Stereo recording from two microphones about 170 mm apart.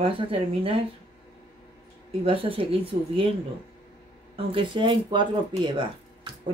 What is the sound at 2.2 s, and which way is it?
Speech, 30° right (ahead or behind).